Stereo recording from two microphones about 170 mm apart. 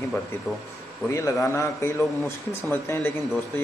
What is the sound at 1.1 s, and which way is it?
Speech, 15° left (ahead or behind).